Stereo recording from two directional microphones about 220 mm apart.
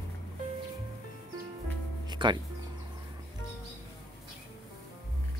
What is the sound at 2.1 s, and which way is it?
Speech, 20° right (ahead or behind).